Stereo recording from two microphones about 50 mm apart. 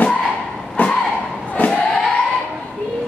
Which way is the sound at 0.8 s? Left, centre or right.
Left.